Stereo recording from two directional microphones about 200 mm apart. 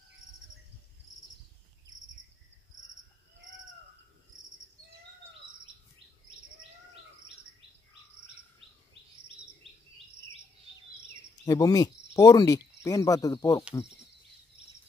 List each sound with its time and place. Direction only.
11.4 s speech: 15° left (ahead or behind)